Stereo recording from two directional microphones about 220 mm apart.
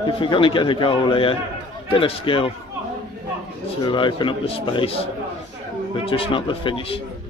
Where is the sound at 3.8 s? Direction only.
20° left (ahead or behind).